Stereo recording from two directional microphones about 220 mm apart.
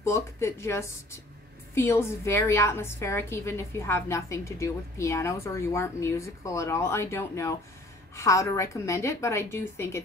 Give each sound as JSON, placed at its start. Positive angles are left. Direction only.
{"t": 0.0, "sound": "a woman's voice", "side_deg": 10}